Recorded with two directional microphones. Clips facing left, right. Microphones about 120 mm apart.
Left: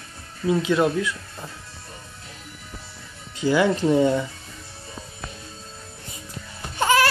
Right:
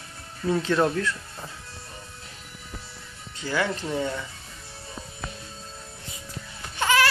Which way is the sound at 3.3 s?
15° left (ahead or behind).